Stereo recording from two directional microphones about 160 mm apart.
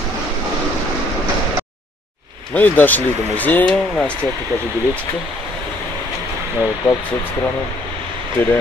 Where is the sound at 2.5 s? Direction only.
10° left (ahead or behind).